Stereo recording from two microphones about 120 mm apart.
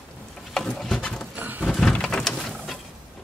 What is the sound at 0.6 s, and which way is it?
Patter, 5° left (ahead or behind).